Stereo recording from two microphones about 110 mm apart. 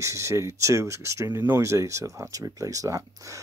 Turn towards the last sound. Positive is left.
turn(degrees=-30)  # may be behind; listen again after turning